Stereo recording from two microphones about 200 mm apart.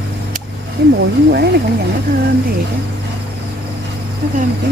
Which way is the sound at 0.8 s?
55° right (ahead or behind).